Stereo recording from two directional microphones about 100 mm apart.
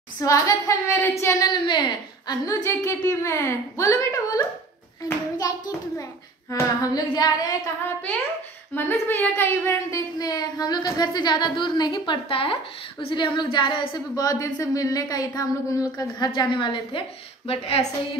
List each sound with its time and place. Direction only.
0.2 s a woman's voice: 35° left (ahead or behind)
1.4 s speech: 45° left (ahead or behind)
2.2 s a woman's voice: 30° left (ahead or behind)
8.7 s speech: 20° left (ahead or behind); by 12.2 s 45° left (ahead or behind)
12.3 s speech: 65° left (ahead or behind)
13.0 s a woman's voice: 50° left (ahead or behind)
16.3 s speech: 55° left (ahead or behind)
17.5 s a woman's voice: 75° left (ahead or behind)